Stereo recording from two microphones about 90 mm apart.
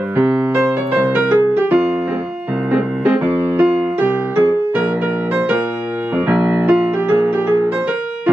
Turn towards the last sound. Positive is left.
turn(degrees=-20)  # may be behind; listen again after turning